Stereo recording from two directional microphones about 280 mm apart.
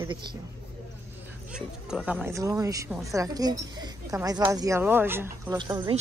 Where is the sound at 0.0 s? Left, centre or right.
Centre.